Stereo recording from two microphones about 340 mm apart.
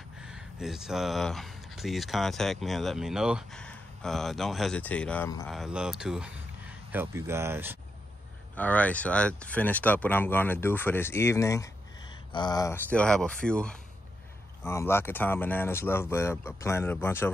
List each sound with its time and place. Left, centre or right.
0.2 s speech: centre
8.5 s speech: centre